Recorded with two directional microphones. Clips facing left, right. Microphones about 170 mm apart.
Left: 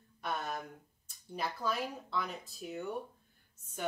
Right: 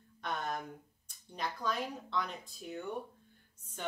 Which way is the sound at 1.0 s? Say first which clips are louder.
Left 1 dB; 5° left (ahead or behind).